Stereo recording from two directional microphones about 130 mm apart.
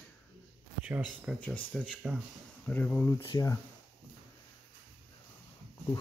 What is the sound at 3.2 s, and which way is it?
Speech, 30° left (ahead or behind).